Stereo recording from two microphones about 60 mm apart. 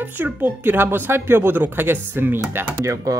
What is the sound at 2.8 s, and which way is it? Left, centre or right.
Speech, right.